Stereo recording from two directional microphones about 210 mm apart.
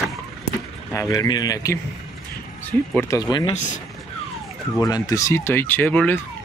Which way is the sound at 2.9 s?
15° left (ahead or behind).